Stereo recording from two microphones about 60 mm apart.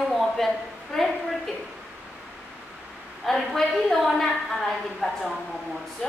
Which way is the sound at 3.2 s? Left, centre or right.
Centre.